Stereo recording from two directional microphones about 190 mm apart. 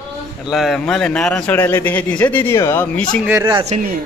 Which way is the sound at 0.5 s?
Centre (ahead or behind).